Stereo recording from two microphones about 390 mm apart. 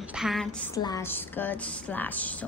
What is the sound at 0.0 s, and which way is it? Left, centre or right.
A woman's voice, centre.